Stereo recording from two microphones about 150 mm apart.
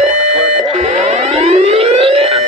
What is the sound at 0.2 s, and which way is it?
Alarm, 45° right (ahead or behind).